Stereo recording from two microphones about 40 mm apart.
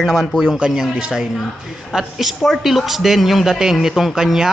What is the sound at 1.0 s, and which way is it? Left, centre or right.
Speech, right.